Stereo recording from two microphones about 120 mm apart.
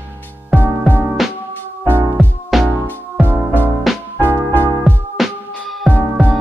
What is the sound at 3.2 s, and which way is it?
Music, 15° right (ahead or behind).